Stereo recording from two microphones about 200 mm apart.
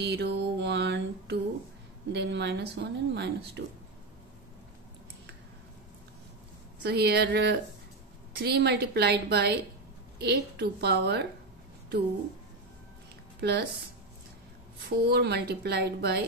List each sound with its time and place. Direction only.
0.0 s mantra: 55° right (ahead or behind)
2.1 s speech: 55° right (ahead or behind)
6.8 s speech: 55° right (ahead or behind)
13.4 s speech: 55° right (ahead or behind)
14.9 s a woman's voice: 55° right (ahead or behind)